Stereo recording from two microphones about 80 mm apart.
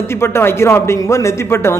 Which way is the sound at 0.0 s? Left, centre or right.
Left.